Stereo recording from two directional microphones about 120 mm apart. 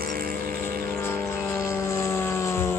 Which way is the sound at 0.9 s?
20° left (ahead or behind).